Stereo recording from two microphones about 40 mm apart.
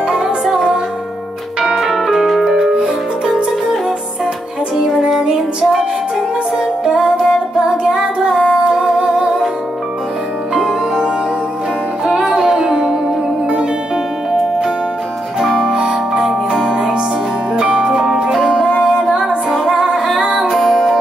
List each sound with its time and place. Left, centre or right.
0.1 s music: centre
1.6 s music: centre
5.2 s music: centre
10.5 s music: centre
12.3 s music: centre
15.4 s music: centre